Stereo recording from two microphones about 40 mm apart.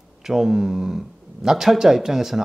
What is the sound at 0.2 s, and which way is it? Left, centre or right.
Speech, centre.